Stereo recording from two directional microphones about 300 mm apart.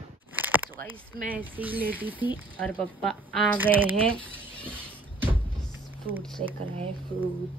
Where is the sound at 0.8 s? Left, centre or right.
Right.